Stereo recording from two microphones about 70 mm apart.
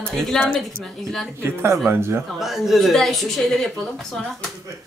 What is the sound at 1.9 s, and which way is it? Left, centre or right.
Speech, right.